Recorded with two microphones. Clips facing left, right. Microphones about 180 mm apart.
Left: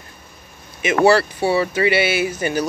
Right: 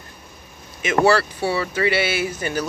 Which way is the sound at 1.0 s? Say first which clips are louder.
Left 4 dB; 25° left (ahead or behind).